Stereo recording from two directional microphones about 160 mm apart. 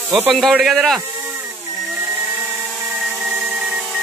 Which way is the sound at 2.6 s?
5° right (ahead or behind).